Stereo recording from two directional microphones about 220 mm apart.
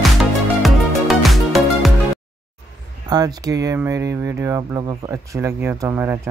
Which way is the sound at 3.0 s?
15° right (ahead or behind).